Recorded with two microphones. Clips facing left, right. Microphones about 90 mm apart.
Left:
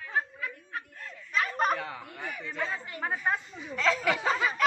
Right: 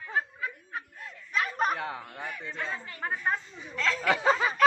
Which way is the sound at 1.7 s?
20° right (ahead or behind).